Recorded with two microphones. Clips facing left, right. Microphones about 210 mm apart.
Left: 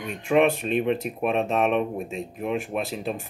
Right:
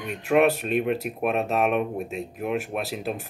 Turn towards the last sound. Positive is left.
turn(degrees=-5)  # may be behind; listen again after turning